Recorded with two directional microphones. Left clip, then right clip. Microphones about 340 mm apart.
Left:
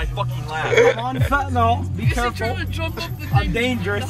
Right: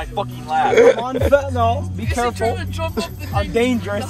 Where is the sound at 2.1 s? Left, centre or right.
Right.